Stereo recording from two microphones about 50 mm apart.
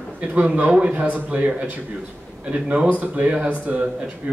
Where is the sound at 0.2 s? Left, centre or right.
Right.